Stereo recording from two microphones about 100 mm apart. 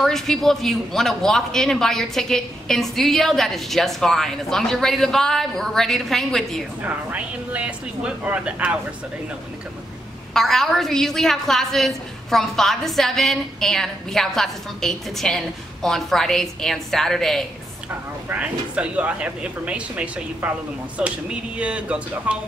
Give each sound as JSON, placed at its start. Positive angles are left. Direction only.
{"t": 0.0, "sound": "a woman's voice", "side_deg": 5}
{"t": 6.8, "sound": "speech", "side_deg": -15}
{"t": 10.3, "sound": "a woman's voice", "side_deg": 5}
{"t": 18.3, "sound": "speech", "side_deg": -15}